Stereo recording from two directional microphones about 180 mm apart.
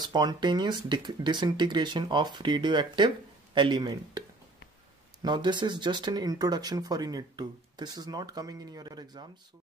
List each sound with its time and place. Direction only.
0.0 s speech: 25° right (ahead or behind)
5.2 s speech: 25° right (ahead or behind)